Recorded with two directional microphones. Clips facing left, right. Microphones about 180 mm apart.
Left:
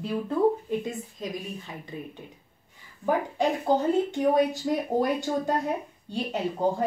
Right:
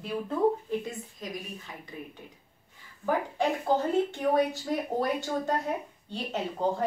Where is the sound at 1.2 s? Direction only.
20° left (ahead or behind).